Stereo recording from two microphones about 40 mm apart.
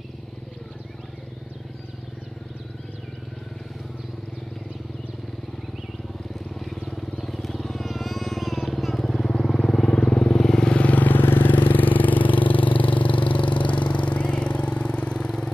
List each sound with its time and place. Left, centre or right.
6.5 s vehicle: centre
9.9 s vehicle: left
10.8 s vehicle: left
11.2 s vehicle: left; by 15.5 s centre